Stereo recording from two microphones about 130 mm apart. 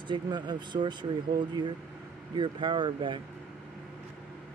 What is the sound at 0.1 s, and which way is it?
Speech, 35° right (ahead or behind).